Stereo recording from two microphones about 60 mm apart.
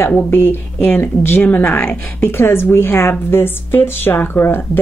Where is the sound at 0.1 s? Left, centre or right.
Left.